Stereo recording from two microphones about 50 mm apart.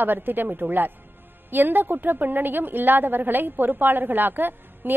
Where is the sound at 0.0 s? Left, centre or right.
Right.